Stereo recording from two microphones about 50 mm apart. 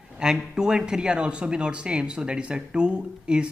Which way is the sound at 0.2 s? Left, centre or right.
Centre.